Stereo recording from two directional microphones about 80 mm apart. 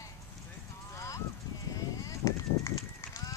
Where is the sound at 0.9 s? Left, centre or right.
Left.